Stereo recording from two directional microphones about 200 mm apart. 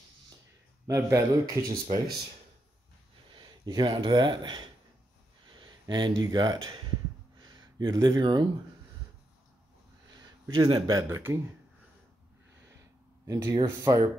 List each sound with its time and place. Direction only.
0.8 s speech: 15° right (ahead or behind)
3.3 s speech: 20° right (ahead or behind)
5.6 s a sound: 20° right (ahead or behind)
6.2 s speech: 20° right (ahead or behind)
7.3 s a sound: 20° right (ahead or behind)
10.4 s speech: 20° right (ahead or behind)
13.3 s speech: 15° right (ahead or behind)